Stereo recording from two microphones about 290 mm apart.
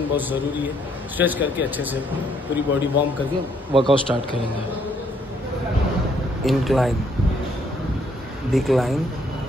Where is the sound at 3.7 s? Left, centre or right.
Centre.